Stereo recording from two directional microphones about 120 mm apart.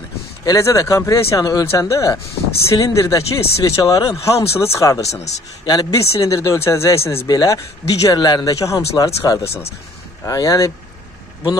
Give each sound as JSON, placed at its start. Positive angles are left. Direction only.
{"t": 0.5, "sound": "speech", "side_deg": 25}
{"t": 5.1, "sound": "a man's voice", "side_deg": 70}
{"t": 5.7, "sound": "speech", "side_deg": 30}
{"t": 9.5, "sound": "speech", "side_deg": 55}
{"t": 10.2, "sound": "speech", "side_deg": 30}